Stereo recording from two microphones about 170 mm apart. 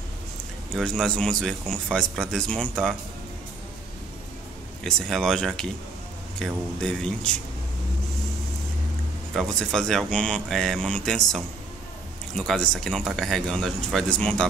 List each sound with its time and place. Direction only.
0.7 s speech: 5° left (ahead or behind)
4.8 s speech: 5° left (ahead or behind)
9.3 s speech: centre (ahead or behind)